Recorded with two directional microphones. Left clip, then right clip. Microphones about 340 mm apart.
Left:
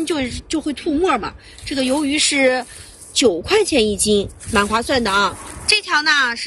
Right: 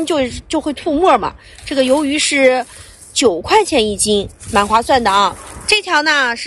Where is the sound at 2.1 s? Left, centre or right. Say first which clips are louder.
Right 2 dB; centre.